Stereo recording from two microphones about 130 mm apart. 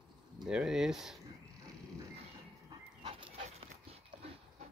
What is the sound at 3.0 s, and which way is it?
Dog, 40° right (ahead or behind).